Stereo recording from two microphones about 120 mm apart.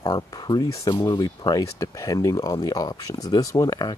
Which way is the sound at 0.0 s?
35° left (ahead or behind).